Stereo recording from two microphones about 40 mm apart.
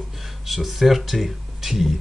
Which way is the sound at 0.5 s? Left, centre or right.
Centre.